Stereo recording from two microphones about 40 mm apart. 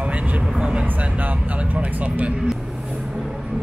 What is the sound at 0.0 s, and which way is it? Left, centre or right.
Vehicle, right.